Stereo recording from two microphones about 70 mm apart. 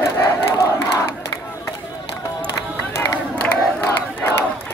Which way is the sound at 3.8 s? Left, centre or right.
Left.